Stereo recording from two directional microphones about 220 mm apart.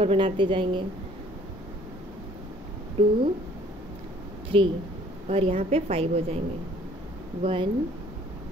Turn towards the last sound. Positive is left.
turn(degrees=-25)  # may be behind; listen again after turning